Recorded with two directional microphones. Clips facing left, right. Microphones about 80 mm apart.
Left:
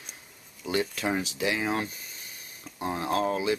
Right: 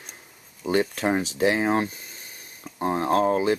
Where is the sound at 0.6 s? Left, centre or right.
Right.